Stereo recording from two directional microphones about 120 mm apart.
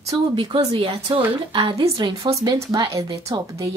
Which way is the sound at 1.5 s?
50° right (ahead or behind).